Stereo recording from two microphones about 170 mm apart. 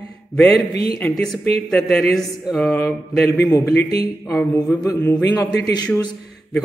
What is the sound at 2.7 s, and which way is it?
A man's voice, 15° left (ahead or behind).